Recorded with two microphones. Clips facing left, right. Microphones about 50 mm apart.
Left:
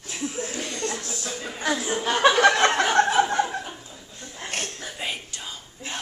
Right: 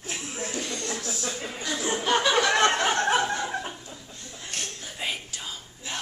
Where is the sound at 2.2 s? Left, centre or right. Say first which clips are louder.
Left 5 dB; left.